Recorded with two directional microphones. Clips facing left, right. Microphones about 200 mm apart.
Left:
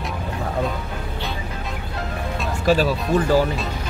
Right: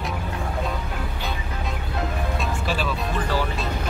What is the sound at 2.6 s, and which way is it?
Speech, 40° left (ahead or behind).